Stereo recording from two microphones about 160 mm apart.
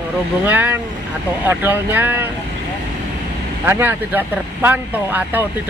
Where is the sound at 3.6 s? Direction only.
10° right (ahead or behind).